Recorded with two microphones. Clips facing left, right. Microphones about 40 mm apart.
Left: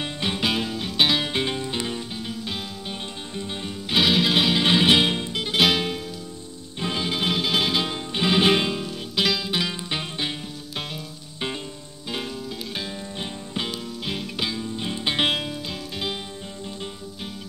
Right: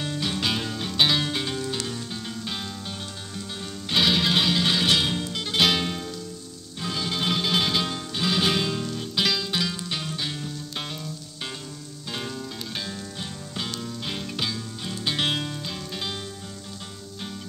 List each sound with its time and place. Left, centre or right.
0.0 s music: left
0.5 s music: centre
1.3 s music: left
2.2 s music: centre
3.9 s music: centre
4.6 s music: left; by 5.9 s centre
6.8 s music: left
8.1 s music: left
12.1 s music: centre
14.8 s music: left